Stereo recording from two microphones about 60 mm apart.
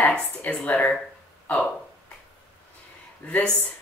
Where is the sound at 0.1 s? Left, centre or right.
Centre.